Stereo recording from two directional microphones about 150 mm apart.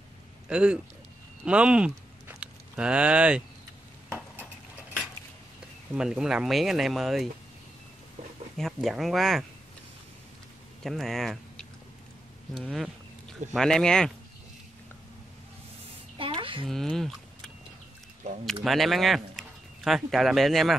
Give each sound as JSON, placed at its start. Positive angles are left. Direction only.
{"t": 0.5, "sound": "speech", "side_deg": -5}
{"t": 1.4, "sound": "a sound", "side_deg": -5}
{"t": 5.9, "sound": "speech", "side_deg": -5}
{"t": 8.5, "sound": "speech", "side_deg": 0}
{"t": 10.8, "sound": "speech", "side_deg": 0}
{"t": 16.2, "sound": "a sound", "side_deg": -35}
{"t": 16.6, "sound": "speech", "side_deg": 0}
{"t": 18.4, "sound": "speech", "side_deg": 0}